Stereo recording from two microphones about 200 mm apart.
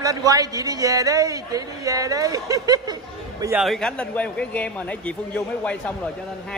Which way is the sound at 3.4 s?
5° right (ahead or behind).